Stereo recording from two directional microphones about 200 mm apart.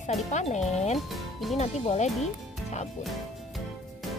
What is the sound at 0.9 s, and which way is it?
Speech, centre (ahead or behind).